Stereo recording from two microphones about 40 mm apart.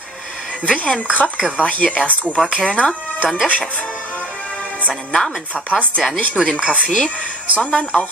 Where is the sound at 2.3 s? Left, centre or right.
Centre.